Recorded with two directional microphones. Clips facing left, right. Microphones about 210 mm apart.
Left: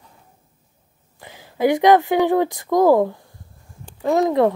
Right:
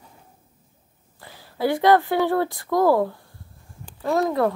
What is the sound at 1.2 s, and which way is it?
Speech, 20° left (ahead or behind).